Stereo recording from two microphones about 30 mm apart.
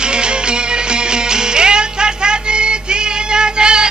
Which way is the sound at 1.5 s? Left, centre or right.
Right.